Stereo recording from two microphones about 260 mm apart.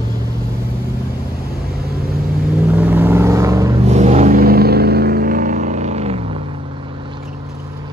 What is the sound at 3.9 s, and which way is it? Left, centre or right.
Vehicle, right.